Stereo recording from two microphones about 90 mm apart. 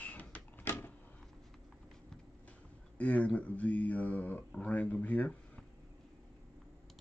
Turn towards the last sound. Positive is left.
turn(degrees=15)  # may be behind; listen again after turning